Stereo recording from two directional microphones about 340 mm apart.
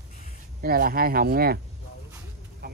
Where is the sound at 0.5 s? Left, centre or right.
Right.